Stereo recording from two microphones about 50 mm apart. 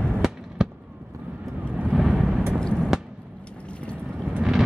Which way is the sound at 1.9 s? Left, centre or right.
Centre.